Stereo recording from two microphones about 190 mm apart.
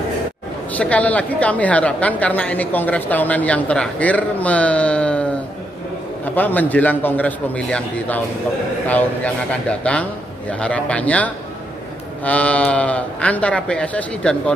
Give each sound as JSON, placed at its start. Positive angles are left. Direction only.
{"t": 0.7, "sound": "a woman's voice", "side_deg": 5}
{"t": 6.3, "sound": "a woman's voice", "side_deg": 10}